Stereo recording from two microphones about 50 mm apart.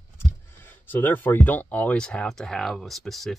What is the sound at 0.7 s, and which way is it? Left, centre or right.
Speech, left.